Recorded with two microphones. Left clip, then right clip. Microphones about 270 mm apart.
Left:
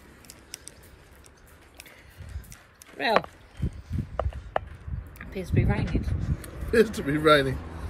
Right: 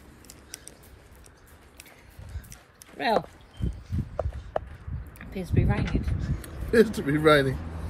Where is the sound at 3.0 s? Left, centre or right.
Centre.